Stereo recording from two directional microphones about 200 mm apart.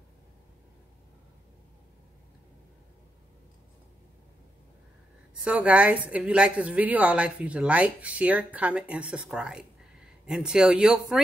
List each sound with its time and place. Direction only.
5.4 s a woman's voice: 5° right (ahead or behind)